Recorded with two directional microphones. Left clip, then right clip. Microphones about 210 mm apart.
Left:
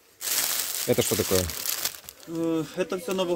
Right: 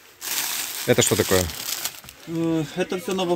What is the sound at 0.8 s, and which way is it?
Speech, 5° left (ahead or behind).